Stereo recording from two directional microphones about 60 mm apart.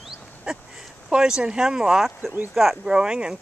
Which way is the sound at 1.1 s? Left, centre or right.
Centre.